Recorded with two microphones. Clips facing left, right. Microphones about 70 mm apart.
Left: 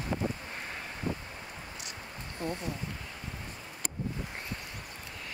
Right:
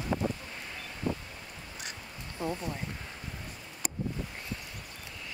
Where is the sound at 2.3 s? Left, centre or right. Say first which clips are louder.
Right 1 dB; centre.